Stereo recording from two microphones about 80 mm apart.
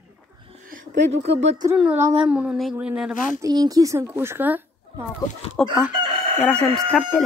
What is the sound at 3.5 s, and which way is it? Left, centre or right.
Speech, right.